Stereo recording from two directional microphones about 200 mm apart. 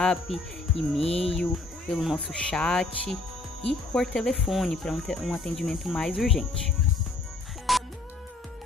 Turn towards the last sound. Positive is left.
turn(degrees=0)  # may be behind; listen again after turning